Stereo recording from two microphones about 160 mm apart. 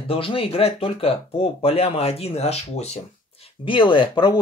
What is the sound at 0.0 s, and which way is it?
Speech, 35° left (ahead or behind).